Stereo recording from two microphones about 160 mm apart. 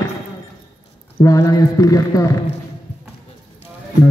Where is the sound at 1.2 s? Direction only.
20° left (ahead or behind).